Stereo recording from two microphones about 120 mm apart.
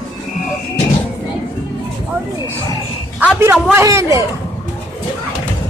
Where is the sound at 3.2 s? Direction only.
20° right (ahead or behind).